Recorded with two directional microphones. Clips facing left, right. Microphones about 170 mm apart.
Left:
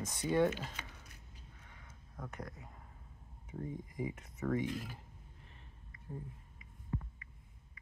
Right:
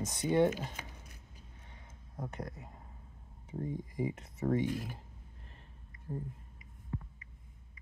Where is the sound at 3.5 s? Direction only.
30° right (ahead or behind).